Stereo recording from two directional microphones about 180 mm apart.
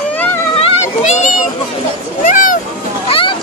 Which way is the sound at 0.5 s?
35° left (ahead or behind).